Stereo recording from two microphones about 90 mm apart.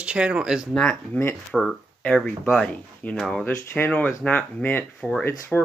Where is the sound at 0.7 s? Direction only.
5° left (ahead or behind).